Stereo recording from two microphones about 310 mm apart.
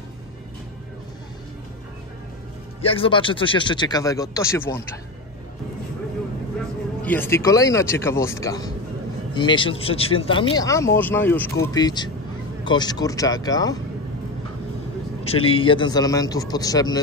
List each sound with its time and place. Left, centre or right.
2.8 s speech: centre
7.0 s speech: centre
15.2 s speech: centre